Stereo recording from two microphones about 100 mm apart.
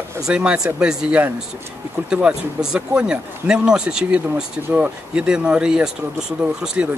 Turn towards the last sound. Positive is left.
turn(degrees=-5)  # may be behind; listen again after turning